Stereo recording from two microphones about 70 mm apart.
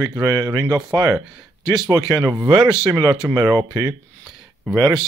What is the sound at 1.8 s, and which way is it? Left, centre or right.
Speech, right.